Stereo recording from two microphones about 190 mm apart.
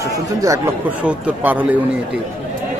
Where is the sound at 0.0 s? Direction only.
15° right (ahead or behind).